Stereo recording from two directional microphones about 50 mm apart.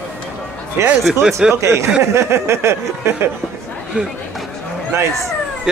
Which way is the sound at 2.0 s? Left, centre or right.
Right.